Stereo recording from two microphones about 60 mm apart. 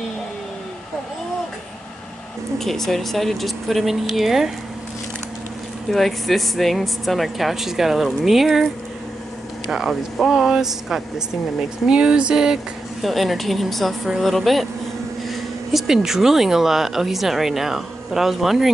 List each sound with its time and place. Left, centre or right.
2.6 s speech: centre
5.9 s speech: centre
9.7 s speech: centre
13.0 s speech: centre